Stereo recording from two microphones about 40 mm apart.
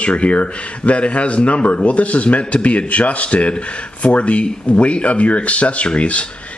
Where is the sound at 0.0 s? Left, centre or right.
Left.